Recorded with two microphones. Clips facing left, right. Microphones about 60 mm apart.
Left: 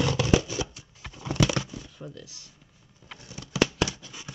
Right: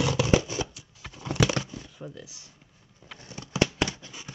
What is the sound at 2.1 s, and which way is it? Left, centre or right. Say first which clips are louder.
Speech: even; centre.